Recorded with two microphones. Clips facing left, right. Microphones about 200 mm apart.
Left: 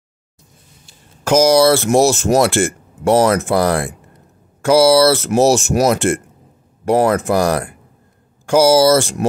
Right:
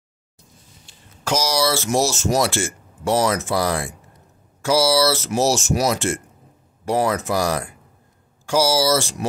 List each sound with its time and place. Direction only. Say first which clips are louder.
1.2 s speech: left 10 dB; 50° left (ahead or behind)